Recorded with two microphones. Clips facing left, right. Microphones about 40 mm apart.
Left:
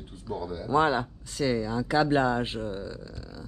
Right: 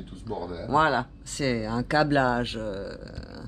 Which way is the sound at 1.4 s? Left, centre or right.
Centre.